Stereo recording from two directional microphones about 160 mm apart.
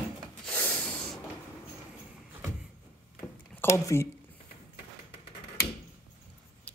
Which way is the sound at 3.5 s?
15° left (ahead or behind).